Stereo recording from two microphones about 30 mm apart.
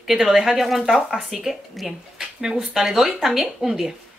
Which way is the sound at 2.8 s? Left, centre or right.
Centre.